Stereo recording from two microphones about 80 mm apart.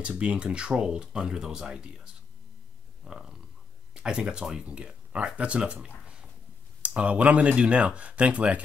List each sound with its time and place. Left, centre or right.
0.0 s speech: centre
3.1 s a sound: centre
3.9 s speech: centre